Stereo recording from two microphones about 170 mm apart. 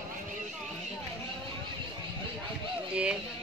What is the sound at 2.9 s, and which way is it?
Speech, 5° right (ahead or behind).